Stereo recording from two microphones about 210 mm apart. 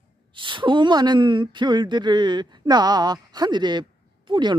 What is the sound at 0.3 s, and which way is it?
A woman's voice, 25° right (ahead or behind).